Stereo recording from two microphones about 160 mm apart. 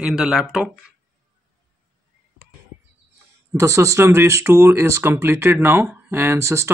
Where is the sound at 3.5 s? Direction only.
20° right (ahead or behind).